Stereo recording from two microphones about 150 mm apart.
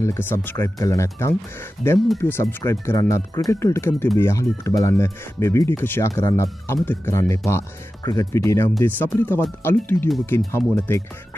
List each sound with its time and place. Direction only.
0.0 s speech: 15° left (ahead or behind)